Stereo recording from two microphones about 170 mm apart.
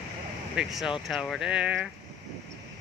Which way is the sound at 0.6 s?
Centre (ahead or behind).